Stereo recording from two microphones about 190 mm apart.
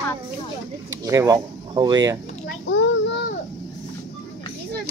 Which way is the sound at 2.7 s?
75° left (ahead or behind).